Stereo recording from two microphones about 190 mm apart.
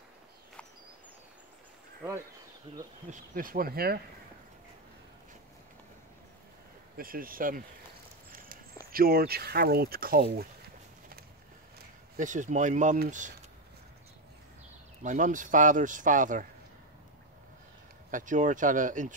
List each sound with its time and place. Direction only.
3.1 s speech: 45° right (ahead or behind)
7.0 s speech: 50° right (ahead or behind)
8.3 s walk: 50° right (ahead or behind)
8.9 s speech: 50° right (ahead or behind)
12.2 s speech: 40° right (ahead or behind)
15.0 s speech: 40° right (ahead or behind)
18.1 s speech: 40° right (ahead or behind)